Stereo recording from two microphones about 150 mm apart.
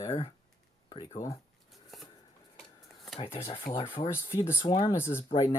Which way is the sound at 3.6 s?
35° left (ahead or behind).